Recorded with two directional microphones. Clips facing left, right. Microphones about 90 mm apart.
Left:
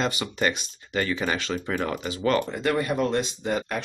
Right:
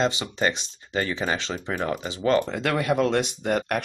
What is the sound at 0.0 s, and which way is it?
Speech, 25° right (ahead or behind).